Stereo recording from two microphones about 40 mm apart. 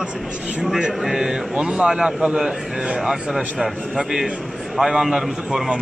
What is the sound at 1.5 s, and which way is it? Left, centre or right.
Speech, right.